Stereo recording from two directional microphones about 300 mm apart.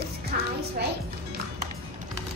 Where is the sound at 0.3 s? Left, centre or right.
Right.